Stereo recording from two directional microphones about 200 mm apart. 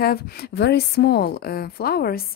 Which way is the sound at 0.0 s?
50° left (ahead or behind).